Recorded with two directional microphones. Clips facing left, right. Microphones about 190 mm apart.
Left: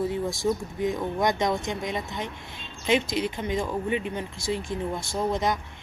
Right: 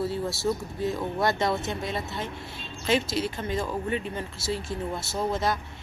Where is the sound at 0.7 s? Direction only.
15° left (ahead or behind).